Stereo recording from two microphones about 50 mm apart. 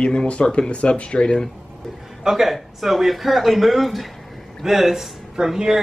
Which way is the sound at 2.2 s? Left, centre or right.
Centre.